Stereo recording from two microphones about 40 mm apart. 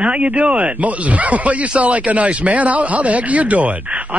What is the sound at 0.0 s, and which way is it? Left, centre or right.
A man's voice, right.